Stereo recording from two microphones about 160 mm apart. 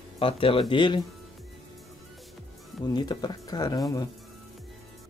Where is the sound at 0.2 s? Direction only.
35° left (ahead or behind).